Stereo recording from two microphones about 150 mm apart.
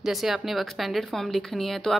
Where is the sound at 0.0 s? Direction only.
Centre (ahead or behind).